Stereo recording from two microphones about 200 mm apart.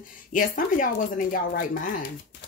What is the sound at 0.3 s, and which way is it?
Speech, 45° left (ahead or behind).